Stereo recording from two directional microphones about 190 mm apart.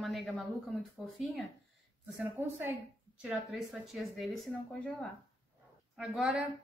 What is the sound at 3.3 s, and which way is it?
Speech, centre (ahead or behind).